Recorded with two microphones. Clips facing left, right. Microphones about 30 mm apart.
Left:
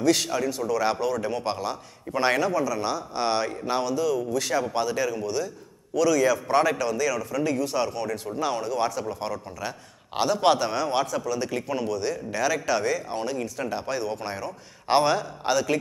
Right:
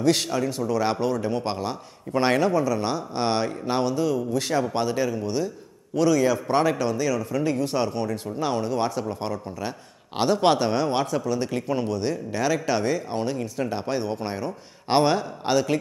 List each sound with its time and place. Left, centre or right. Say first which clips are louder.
0.0 s a man's voice: right 1 dB; right
12.3 s a man's voice: even; right
14.9 s a man's voice: right 1 dB; right